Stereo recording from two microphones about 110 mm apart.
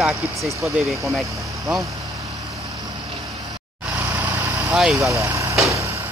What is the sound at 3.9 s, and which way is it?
Vehicle, 15° right (ahead or behind).